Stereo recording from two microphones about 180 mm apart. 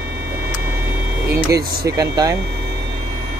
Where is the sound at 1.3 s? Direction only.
20° right (ahead or behind).